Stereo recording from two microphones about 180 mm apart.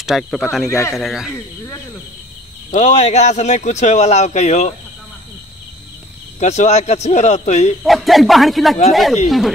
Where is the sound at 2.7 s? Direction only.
40° left (ahead or behind).